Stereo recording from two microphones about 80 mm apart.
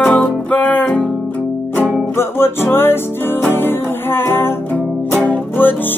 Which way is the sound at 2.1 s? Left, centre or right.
Left.